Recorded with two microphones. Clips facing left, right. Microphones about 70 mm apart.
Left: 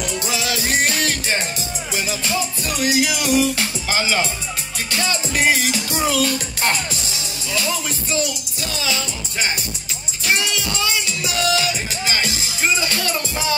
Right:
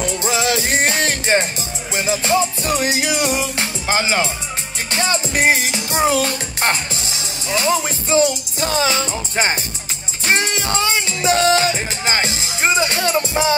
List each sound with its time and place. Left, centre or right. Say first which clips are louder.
0.0 s music: right 5 dB; right